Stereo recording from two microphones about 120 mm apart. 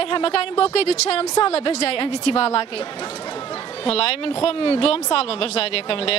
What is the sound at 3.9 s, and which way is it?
Speech, 55° left (ahead or behind).